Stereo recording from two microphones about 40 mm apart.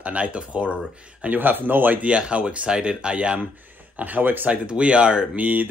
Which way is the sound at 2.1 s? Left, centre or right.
Right.